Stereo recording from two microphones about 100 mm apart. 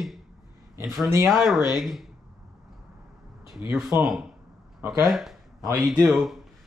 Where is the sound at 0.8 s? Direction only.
Centre (ahead or behind).